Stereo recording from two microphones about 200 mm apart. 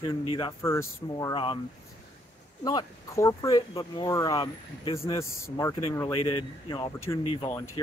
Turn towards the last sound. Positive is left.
turn(degrees=15)  # may be behind; listen again after turning